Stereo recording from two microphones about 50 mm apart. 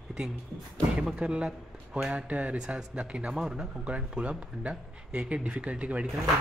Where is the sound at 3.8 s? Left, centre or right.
Right.